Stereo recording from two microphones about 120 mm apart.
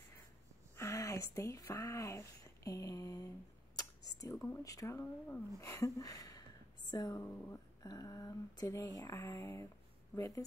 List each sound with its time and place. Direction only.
0.7 s speech: 25° left (ahead or behind)